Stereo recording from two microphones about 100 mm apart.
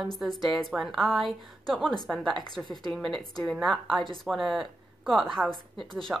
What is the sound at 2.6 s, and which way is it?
A woman's voice, 10° right (ahead or behind).